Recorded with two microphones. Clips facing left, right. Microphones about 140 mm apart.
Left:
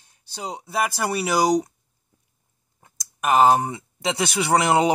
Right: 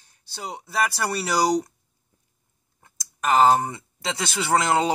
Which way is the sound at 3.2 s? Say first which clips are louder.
Left 1 dB; 15° left (ahead or behind).